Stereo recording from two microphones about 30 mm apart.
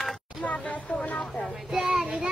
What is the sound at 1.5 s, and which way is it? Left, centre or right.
Child singing, centre.